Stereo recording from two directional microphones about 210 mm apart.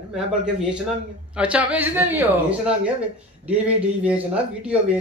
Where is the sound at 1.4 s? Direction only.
5° right (ahead or behind).